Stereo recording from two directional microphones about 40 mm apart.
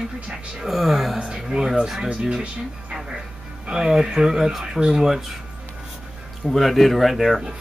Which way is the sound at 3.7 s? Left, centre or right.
Centre.